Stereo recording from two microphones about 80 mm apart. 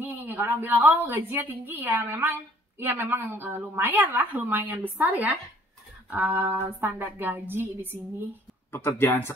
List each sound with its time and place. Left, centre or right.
0.0 s a woman's voice: right
8.7 s speech: left